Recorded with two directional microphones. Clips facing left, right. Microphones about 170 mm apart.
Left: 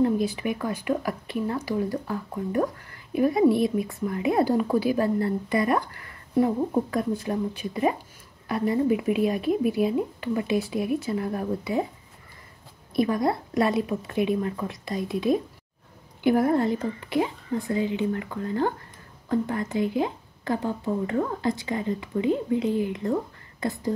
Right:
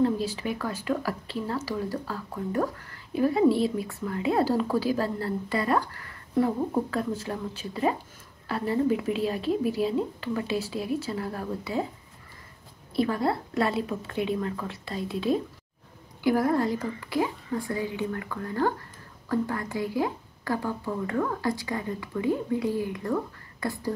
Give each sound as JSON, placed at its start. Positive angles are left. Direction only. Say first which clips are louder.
{"t": 0.0, "sound": "speech", "louder": "left 2 dB", "side_deg": 15}
{"t": 12.9, "sound": "speech", "louder": "left 2 dB", "side_deg": 15}